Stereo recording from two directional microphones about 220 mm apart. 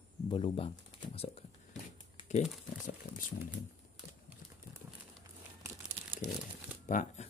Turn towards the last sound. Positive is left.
turn(degrees=35)  # may be behind; listen again after turning